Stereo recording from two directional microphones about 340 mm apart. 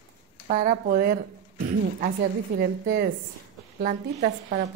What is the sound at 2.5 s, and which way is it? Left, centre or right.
A woman's voice, right.